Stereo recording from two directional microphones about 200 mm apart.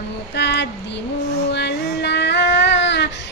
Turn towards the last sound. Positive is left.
turn(degrees=60)  # may be behind; listen again after turning